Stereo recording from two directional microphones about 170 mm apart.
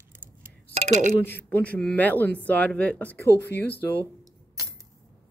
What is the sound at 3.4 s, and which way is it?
Speech, 80° left.